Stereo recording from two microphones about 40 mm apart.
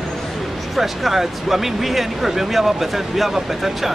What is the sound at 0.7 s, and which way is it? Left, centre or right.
Speech, centre.